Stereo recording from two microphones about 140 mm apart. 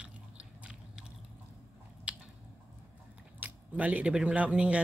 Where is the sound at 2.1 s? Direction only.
10° right (ahead or behind).